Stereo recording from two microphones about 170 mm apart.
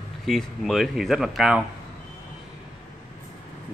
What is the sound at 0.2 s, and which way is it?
Speech, centre (ahead or behind).